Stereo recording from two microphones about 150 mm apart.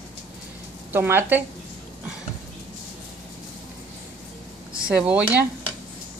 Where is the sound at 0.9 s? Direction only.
15° right (ahead or behind).